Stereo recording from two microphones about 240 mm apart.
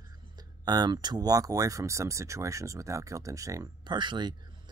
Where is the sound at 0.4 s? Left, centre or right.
Centre.